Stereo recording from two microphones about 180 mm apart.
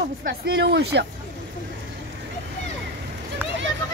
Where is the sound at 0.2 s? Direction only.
65° right (ahead or behind).